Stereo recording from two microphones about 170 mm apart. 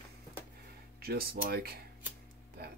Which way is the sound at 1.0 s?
65° right (ahead or behind).